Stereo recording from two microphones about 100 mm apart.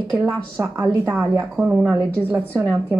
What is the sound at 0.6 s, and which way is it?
Speech, 25° right (ahead or behind).